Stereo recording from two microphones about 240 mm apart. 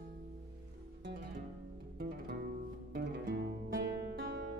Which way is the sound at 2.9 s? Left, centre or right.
Right.